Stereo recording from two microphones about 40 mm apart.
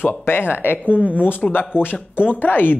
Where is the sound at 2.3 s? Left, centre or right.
Left.